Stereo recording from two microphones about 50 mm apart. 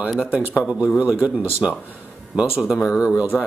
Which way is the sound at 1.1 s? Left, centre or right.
Right.